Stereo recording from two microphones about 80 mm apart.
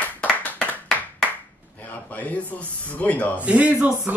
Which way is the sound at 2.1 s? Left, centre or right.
Centre.